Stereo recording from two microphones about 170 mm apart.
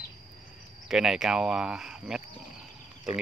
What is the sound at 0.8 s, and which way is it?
Speech, 5° right (ahead or behind).